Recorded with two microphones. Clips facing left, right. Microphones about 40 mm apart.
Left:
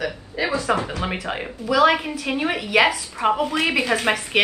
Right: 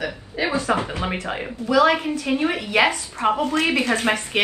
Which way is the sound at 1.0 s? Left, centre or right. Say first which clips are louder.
Even; centre.